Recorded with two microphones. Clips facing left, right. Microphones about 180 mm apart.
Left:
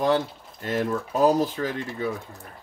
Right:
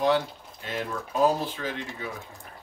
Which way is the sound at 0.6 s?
45° left (ahead or behind).